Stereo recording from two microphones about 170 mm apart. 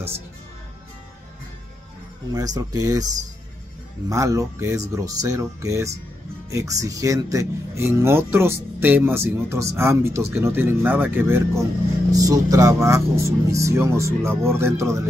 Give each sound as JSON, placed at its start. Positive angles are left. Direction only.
{"t": 2.3, "sound": "speech", "side_deg": -20}
{"t": 4.1, "sound": "speech", "side_deg": -20}